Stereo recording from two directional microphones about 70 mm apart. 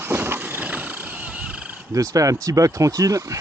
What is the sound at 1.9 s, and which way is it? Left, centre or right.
Speech, right.